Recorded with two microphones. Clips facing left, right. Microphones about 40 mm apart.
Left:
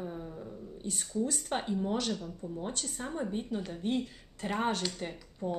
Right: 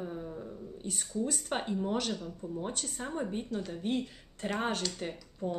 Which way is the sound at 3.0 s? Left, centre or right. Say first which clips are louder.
Even; centre.